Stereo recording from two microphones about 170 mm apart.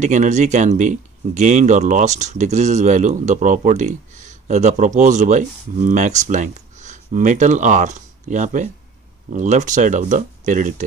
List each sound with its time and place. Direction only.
0.0 s speech: 45° right (ahead or behind)